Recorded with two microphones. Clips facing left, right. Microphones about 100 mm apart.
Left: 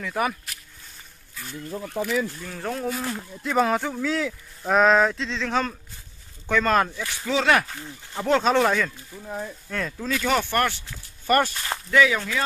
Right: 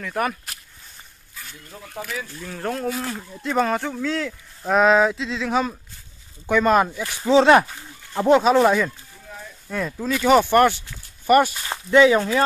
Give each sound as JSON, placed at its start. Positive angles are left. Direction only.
{"t": 0.0, "sound": "speech", "side_deg": 0}
{"t": 2.4, "sound": "speech", "side_deg": 0}
{"t": 7.1, "sound": "speech", "side_deg": -25}
{"t": 11.9, "sound": "speech", "side_deg": -30}